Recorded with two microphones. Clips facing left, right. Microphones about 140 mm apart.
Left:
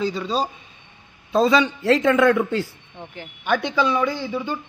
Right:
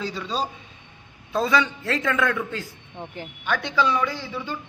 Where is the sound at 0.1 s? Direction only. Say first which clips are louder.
Left 4 dB; 10° left (ahead or behind); by 2.6 s 30° left (ahead or behind).